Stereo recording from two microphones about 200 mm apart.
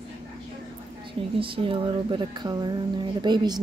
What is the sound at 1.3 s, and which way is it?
Speech, 25° right (ahead or behind).